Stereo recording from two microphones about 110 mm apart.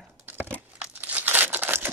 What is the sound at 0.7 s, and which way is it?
Crumpling, 15° right (ahead or behind).